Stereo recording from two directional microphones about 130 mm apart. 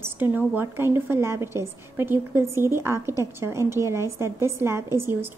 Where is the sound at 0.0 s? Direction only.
15° right (ahead or behind).